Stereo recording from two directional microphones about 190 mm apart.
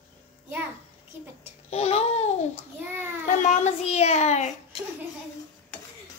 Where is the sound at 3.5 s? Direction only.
35° left (ahead or behind).